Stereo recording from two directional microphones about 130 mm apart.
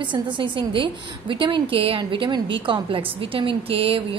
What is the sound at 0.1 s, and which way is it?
A woman's voice, 40° right (ahead or behind).